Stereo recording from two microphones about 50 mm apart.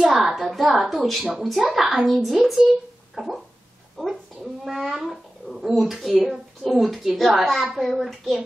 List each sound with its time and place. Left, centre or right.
0.1 s a woman's voice: centre
3.2 s a sound: centre
4.0 s speech: centre